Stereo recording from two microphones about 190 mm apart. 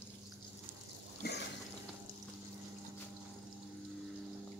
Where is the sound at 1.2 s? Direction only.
60° left (ahead or behind).